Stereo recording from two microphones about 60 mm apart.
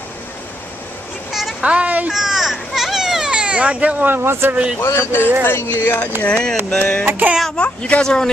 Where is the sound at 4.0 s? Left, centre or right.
Right.